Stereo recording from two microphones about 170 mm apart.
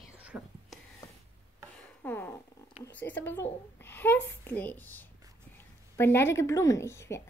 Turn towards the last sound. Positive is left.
turn(degrees=15)  # may be behind; listen again after turning